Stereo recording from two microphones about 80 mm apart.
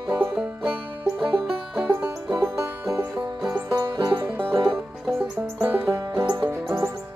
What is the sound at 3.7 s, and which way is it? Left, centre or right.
Banjo, right.